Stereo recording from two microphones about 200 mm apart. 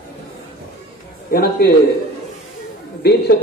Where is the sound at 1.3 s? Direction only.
50° left (ahead or behind).